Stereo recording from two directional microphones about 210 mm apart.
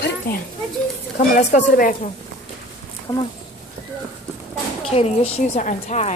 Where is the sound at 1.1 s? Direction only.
35° left (ahead or behind).